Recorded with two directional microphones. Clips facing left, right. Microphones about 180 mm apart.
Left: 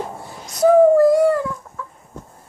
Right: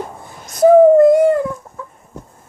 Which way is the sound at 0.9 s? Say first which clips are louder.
Right 4 dB; 20° right (ahead or behind).